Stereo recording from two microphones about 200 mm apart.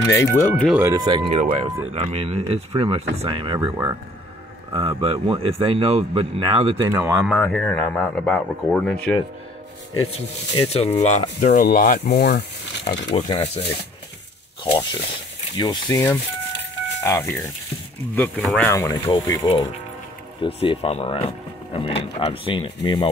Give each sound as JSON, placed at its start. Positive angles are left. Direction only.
{"t": 0.0, "sound": "speech", "side_deg": 15}
{"t": 0.7, "sound": "speech", "side_deg": -10}
{"t": 0.9, "sound": "speech", "side_deg": -20}
{"t": 6.9, "sound": "speech", "side_deg": -15}
{"t": 7.2, "sound": "speech", "side_deg": 5}
{"t": 10.1, "sound": "speech", "side_deg": 30}
{"t": 13.1, "sound": "speech", "side_deg": 30}